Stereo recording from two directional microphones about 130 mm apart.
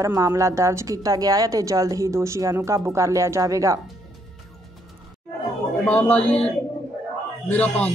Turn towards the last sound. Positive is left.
turn(degrees=15)  # may be behind; listen again after turning